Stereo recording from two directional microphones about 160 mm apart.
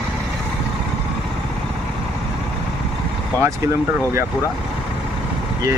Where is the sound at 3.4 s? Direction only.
15° right (ahead or behind).